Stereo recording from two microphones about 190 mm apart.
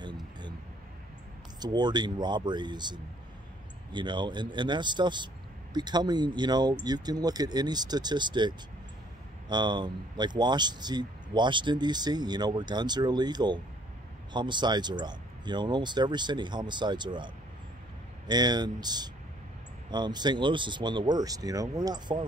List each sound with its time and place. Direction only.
1.6 s speech: 20° right (ahead or behind)